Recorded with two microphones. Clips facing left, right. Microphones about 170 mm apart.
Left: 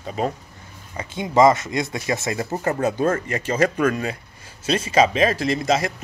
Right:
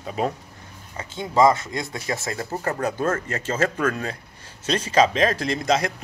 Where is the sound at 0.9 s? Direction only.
15° left (ahead or behind).